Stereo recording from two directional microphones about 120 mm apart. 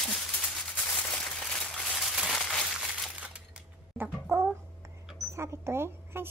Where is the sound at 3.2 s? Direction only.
15° right (ahead or behind).